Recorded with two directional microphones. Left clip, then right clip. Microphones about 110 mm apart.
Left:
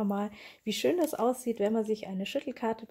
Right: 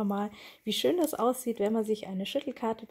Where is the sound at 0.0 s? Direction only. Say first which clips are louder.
Even; 15° right (ahead or behind).